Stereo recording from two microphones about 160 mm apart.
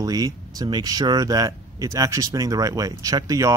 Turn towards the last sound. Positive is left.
turn(degrees=-20)  # may be behind; listen again after turning